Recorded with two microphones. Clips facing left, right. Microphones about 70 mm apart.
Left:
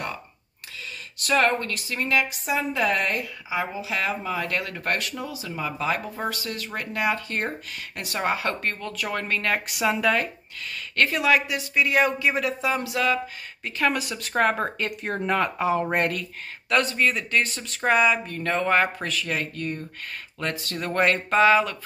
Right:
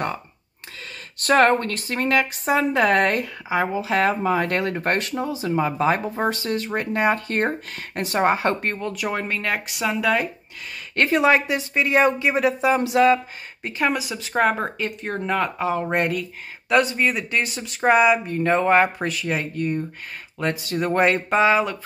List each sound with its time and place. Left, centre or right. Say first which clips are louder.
1.2 s speech: right 5 dB; right
8.9 s speech: right 2 dB; centre
11.0 s speech: right 4 dB; right
13.9 s speech: right 2 dB; centre